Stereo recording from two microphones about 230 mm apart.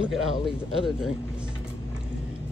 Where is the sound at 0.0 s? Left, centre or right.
Centre.